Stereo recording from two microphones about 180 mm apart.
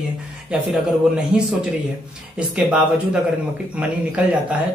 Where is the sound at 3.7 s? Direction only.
5° right (ahead or behind).